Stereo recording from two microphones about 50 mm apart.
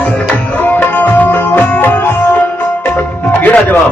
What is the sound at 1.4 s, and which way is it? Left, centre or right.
Music, left.